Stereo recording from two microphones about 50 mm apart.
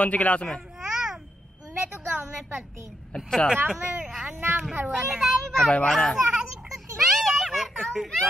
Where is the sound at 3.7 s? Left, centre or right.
Centre.